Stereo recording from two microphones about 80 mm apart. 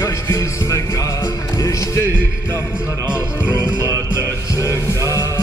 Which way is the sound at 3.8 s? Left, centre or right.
Left.